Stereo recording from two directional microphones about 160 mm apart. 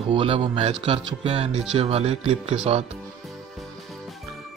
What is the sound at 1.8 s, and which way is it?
Speech, 40° right (ahead or behind).